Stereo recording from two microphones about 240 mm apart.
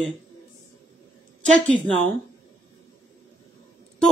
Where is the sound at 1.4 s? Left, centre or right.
Centre.